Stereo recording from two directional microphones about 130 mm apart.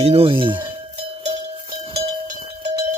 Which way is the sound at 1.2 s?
40° right (ahead or behind).